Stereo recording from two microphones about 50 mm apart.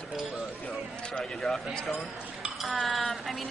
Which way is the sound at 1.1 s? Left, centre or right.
Centre.